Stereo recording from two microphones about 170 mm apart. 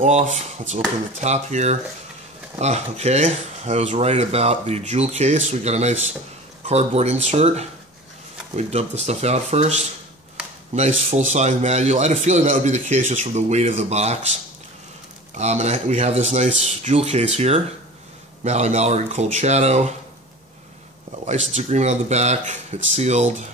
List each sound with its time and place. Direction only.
0.0 s a man's voice: 45° right (ahead or behind)
15.3 s speech: 40° right (ahead or behind)
21.3 s a man's voice: 40° right (ahead or behind)